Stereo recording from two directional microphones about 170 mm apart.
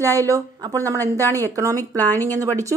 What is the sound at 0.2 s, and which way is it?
Speech, 20° right (ahead or behind).